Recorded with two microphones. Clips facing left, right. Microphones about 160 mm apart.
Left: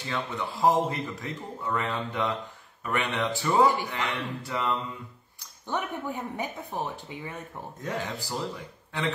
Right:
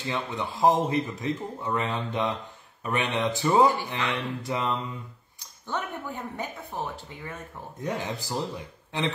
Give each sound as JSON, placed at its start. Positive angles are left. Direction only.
{"t": 0.0, "sound": "speech", "side_deg": -20}
{"t": 5.7, "sound": "speech", "side_deg": 15}
{"t": 7.8, "sound": "speech", "side_deg": -15}